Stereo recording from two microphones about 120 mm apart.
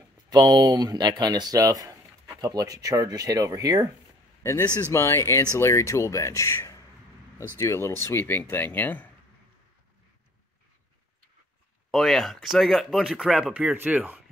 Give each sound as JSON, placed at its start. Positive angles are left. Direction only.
{"t": 0.3, "sound": "speech", "side_deg": -40}
{"t": 4.4, "sound": "a man's voice", "side_deg": 20}
{"t": 11.9, "sound": "speech", "side_deg": 0}